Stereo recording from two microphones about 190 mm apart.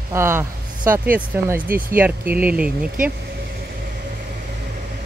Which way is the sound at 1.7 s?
45° right (ahead or behind).